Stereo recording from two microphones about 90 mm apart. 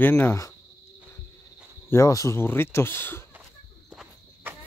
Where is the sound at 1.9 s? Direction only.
40° left (ahead or behind).